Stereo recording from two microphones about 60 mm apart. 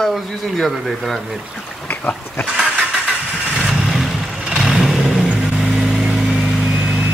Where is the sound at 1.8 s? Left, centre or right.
Left.